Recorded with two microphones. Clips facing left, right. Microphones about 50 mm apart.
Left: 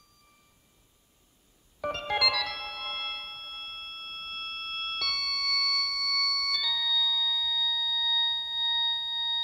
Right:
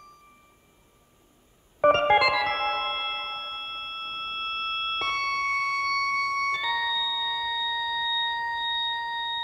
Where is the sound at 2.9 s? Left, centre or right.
Right.